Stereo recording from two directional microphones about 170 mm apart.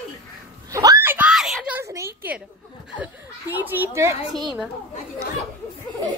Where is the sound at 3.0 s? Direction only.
10° right (ahead or behind).